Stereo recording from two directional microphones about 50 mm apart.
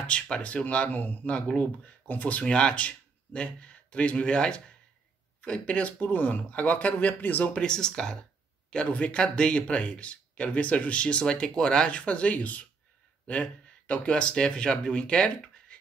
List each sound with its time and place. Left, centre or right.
0.0 s speech: left
2.4 s speech: left
7.5 s speech: centre